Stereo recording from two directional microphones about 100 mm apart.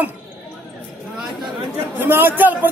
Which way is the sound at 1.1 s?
Centre (ahead or behind).